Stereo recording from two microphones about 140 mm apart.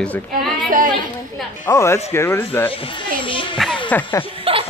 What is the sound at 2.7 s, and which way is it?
Speech, 40° left (ahead or behind).